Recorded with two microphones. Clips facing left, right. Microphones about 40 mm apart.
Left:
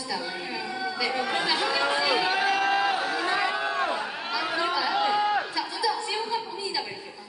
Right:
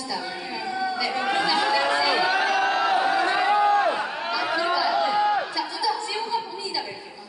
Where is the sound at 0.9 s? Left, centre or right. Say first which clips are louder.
Right 2 dB; centre.